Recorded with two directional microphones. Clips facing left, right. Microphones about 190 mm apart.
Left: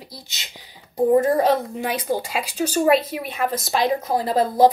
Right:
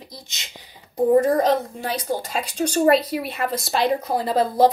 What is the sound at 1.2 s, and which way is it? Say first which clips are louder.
Speech: even; 10° left (ahead or behind).